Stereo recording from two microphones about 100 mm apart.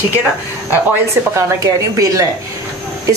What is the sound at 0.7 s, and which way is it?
Speech, 25° right (ahead or behind).